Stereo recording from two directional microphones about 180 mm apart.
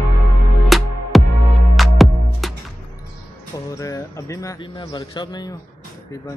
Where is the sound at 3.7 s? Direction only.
15° left (ahead or behind).